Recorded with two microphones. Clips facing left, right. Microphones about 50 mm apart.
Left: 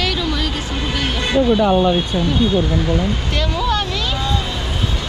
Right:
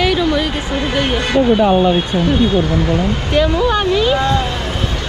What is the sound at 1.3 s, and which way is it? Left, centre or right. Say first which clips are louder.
Speech: right 2 dB; right.